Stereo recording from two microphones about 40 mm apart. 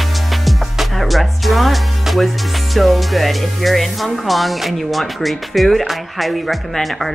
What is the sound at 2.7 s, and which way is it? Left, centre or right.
Speech, centre.